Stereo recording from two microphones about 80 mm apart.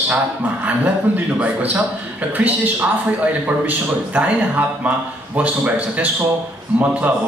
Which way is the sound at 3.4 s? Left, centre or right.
Centre.